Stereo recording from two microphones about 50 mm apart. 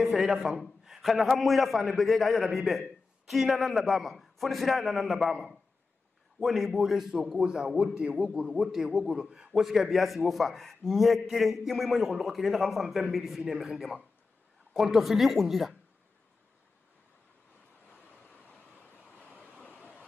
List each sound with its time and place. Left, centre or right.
0.0 s a man's voice: centre
6.4 s a man's voice: centre
18.8 s waves: left
19.2 s a sound: left